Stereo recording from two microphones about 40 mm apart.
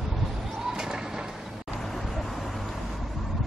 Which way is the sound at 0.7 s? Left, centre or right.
Centre.